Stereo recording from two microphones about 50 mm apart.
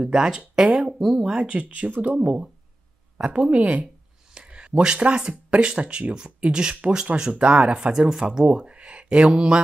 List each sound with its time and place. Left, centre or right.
0.0 s speech: centre
1.2 s speech: right
4.3 s speech: centre
7.9 s speech: centre